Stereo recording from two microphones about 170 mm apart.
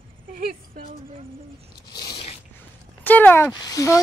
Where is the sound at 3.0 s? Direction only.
10° left (ahead or behind).